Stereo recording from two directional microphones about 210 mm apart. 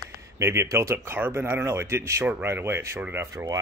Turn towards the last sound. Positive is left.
turn(degrees=-15)  # may be behind; listen again after turning